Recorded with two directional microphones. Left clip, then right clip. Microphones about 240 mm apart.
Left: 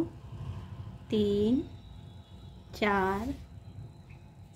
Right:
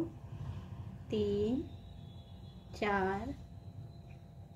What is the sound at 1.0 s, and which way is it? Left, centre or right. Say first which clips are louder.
Speech: left 5 dB; centre.